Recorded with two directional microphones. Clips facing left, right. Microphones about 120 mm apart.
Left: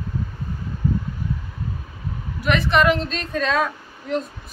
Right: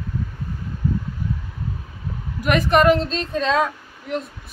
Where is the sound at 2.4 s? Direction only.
45° right (ahead or behind); by 4.2 s 20° right (ahead or behind).